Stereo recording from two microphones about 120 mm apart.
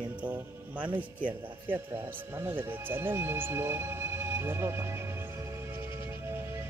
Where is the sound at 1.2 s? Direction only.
45° right (ahead or behind).